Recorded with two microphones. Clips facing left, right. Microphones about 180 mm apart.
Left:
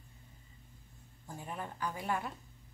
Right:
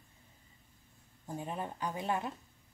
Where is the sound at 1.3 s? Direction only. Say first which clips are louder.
Right 4 dB; 20° right (ahead or behind).